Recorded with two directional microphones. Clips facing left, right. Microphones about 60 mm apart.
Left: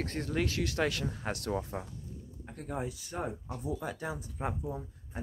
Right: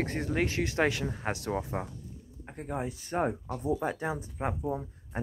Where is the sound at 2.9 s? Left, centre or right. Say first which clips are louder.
Right 7 dB; right.